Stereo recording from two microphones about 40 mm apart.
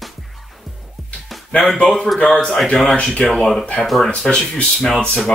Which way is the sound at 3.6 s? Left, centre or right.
Left.